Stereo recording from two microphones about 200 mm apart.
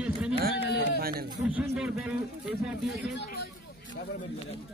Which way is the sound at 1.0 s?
50° right (ahead or behind).